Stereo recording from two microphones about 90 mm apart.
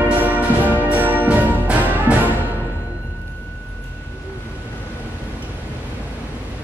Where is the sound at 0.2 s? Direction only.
20° right (ahead or behind).